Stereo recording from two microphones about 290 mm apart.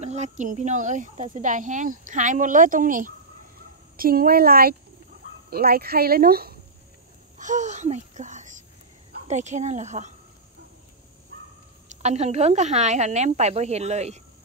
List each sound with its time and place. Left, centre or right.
0.0 s speech: right
11.9 s speech: right